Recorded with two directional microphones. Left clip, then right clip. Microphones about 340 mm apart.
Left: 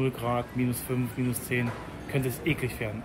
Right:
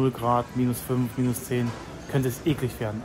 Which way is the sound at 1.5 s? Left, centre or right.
Right.